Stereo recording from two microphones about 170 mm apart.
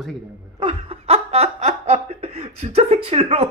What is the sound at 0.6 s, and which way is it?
Laughter, 35° right (ahead or behind).